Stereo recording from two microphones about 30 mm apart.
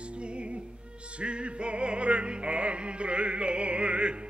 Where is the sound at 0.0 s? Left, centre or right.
Right.